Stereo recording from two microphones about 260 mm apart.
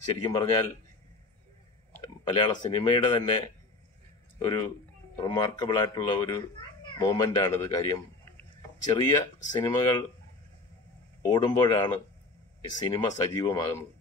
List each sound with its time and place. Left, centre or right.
0.2 s speech: centre
2.2 s speech: centre
5.2 s speech: centre
11.2 s speech: centre